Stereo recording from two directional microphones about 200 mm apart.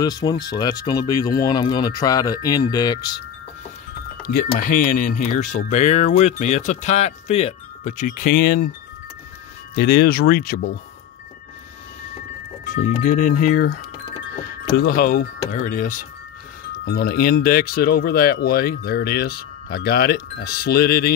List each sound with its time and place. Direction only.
0.0 s speech: 20° left (ahead or behind)
4.2 s speech: 45° left (ahead or behind)
9.8 s speech: 55° left (ahead or behind)
12.6 s speech: 40° left (ahead or behind)